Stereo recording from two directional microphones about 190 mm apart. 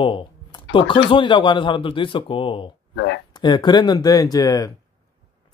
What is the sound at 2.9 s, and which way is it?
Speech, 70° left (ahead or behind).